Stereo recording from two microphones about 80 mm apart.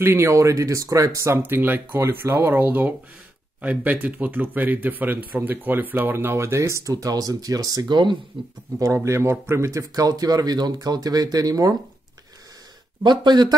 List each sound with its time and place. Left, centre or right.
0.0 s speech: right
7.9 s speech: right
8.7 s speech: right
13.0 s speech: right